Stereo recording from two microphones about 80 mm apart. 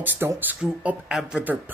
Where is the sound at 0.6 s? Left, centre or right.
Centre.